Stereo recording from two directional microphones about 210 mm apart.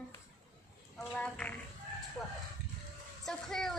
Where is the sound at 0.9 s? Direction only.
5° left (ahead or behind).